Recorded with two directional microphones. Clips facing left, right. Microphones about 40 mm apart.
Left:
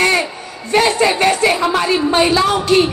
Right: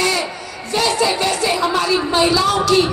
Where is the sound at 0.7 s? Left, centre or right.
Left.